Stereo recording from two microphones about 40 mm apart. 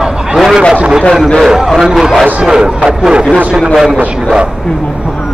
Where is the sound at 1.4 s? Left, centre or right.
Centre.